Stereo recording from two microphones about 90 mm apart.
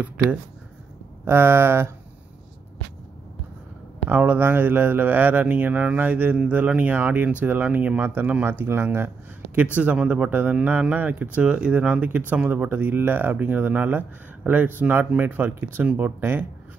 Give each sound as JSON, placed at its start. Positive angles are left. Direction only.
{"t": 1.2, "sound": "speech", "side_deg": -25}
{"t": 4.1, "sound": "speech", "side_deg": -20}
{"t": 9.8, "sound": "speech", "side_deg": -15}